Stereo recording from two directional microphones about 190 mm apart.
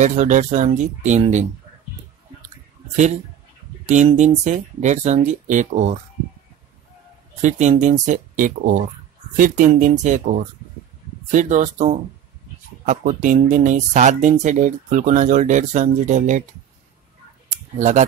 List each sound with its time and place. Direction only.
0.0 s speech: 40° right (ahead or behind)
3.8 s speech: 40° right (ahead or behind)
7.4 s speech: 40° right (ahead or behind)
17.7 s speech: 40° right (ahead or behind)